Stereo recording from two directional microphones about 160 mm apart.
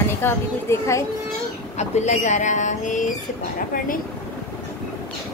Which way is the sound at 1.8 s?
45° left (ahead or behind).